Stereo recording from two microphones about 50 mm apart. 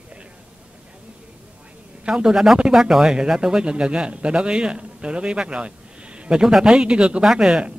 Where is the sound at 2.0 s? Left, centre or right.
Centre.